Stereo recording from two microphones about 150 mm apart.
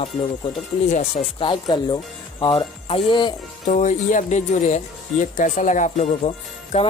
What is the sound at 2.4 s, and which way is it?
Music, 35° left (ahead or behind).